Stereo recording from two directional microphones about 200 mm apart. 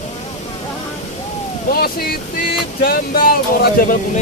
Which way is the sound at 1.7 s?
50° left (ahead or behind).